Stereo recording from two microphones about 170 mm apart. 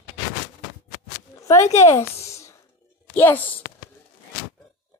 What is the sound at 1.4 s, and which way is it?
Speech, 15° left (ahead or behind).